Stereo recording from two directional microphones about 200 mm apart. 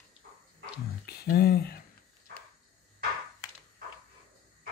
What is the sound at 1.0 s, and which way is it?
Speech, 50° left (ahead or behind).